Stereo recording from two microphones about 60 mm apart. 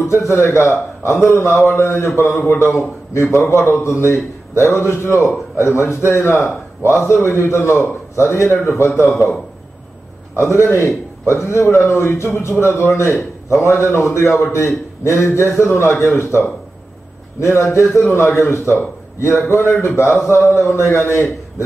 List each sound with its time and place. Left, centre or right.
0.0 s a man's voice: left
3.1 s a man's voice: left
10.3 s a man's voice: left